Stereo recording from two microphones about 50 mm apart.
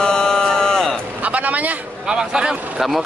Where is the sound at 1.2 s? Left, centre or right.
Right.